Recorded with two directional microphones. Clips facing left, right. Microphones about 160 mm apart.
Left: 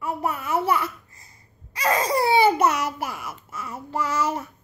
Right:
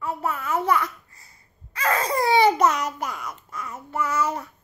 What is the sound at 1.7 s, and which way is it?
Laughter, 15° left (ahead or behind).